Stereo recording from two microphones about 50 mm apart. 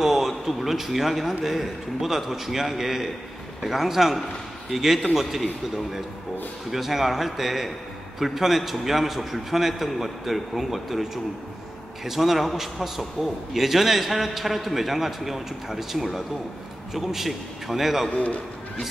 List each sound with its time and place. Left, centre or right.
0.0 s a sound: centre
0.5 s a man's voice: centre
6.7 s a man's voice: centre
18.1 s a man's voice: left